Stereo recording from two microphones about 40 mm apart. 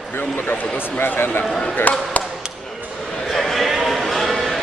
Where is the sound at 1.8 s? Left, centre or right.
Left.